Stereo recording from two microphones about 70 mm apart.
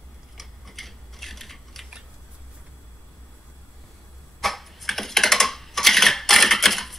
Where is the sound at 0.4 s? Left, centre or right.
Centre.